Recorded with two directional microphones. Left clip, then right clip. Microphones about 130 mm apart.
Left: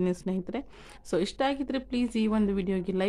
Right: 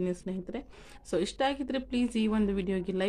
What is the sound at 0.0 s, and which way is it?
Speech, 35° left (ahead or behind).